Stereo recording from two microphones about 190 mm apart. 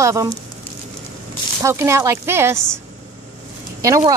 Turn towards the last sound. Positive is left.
turn(degrees=-15)  # may be behind; listen again after turning